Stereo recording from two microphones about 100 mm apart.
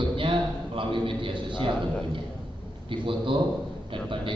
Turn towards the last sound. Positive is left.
turn(degrees=-60)  # may be behind; listen again after turning